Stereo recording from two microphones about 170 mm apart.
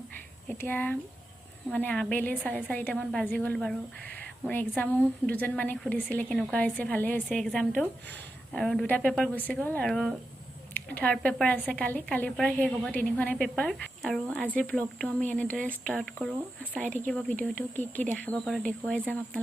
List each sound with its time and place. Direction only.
0.5 s a woman's voice: 10° left (ahead or behind)